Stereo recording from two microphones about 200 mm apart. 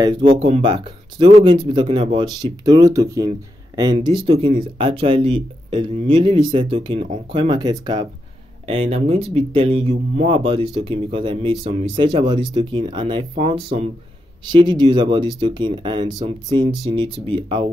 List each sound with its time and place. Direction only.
0.0 s speech: 25° right (ahead or behind)